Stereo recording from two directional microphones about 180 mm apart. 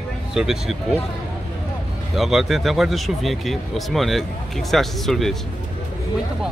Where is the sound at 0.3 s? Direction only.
Centre (ahead or behind).